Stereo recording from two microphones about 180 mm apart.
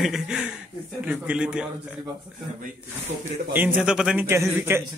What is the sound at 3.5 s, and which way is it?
Speech, 10° right (ahead or behind).